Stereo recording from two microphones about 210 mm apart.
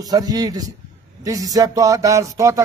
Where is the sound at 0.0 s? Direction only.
20° right (ahead or behind).